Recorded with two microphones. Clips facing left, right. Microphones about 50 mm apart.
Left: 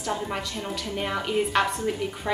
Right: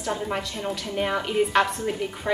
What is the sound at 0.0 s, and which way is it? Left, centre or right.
A woman's voice, centre.